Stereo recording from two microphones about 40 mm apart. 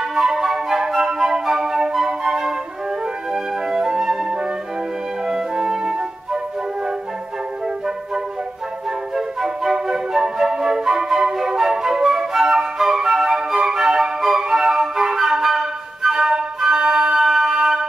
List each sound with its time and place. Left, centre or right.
0.1 s flute: centre
3.6 s flute: centre
5.7 s flute: centre
9.1 s flute: centre